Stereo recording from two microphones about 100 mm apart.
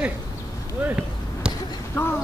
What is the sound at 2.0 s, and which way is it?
Speech, 30° left (ahead or behind).